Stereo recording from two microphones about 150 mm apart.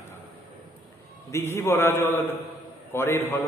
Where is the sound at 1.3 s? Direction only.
15° left (ahead or behind).